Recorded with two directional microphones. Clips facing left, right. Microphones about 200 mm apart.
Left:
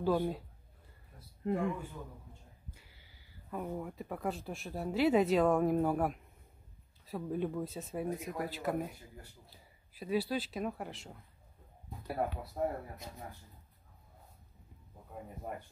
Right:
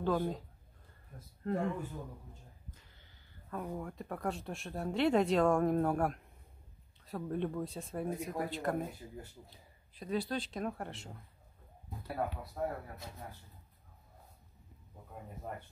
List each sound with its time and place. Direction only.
0.0 s speech: 10° left (ahead or behind)
1.4 s speech: 15° left (ahead or behind)
9.9 s speech: 5° left (ahead or behind)
12.6 s speech: 20° left (ahead or behind)